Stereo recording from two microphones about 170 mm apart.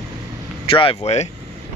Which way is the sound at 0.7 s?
35° left (ahead or behind).